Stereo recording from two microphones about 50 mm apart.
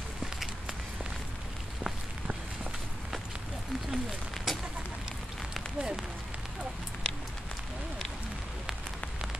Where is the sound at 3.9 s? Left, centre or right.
Centre.